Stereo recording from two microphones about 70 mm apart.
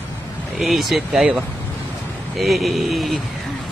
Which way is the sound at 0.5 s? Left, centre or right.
Centre.